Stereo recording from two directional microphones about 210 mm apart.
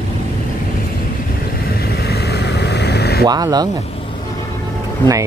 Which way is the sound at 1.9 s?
50° left (ahead or behind).